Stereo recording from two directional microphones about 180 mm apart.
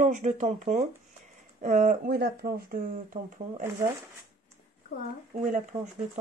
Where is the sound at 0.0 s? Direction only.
45° right (ahead or behind).